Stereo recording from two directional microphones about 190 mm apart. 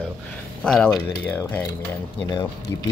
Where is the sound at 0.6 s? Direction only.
5° left (ahead or behind).